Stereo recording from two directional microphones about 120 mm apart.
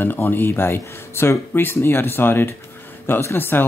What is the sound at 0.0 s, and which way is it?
Speech, 15° left (ahead or behind).